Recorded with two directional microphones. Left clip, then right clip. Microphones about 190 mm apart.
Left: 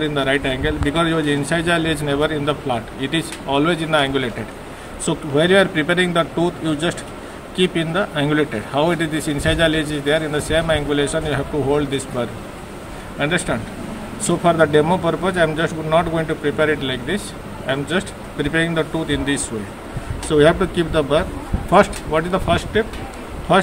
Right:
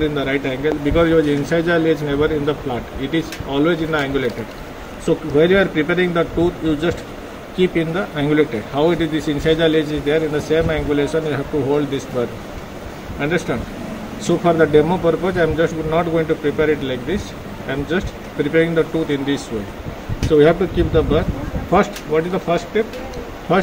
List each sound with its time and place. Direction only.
0.0 s speech: 15° left (ahead or behind)